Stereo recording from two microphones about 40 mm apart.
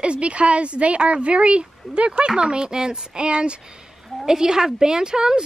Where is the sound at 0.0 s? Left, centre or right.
Right.